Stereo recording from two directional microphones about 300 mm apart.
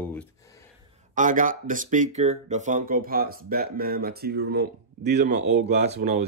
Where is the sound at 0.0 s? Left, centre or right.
Centre.